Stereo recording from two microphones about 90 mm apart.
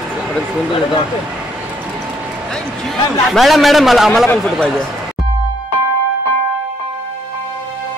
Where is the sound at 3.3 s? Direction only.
Centre (ahead or behind).